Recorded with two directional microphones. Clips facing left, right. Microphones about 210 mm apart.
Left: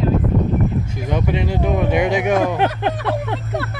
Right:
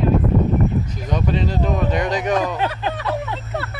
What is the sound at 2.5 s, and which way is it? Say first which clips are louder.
Speech: left 4 dB; 60° left (ahead or behind).